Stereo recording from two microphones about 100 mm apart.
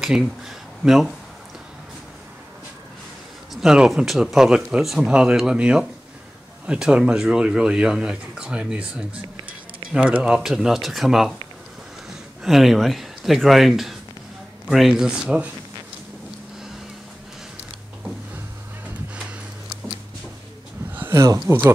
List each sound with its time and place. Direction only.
0.0 s speech: centre (ahead or behind)
3.6 s speech: 5° right (ahead or behind)
12.4 s speech: centre (ahead or behind)
20.9 s speech: 25° right (ahead or behind)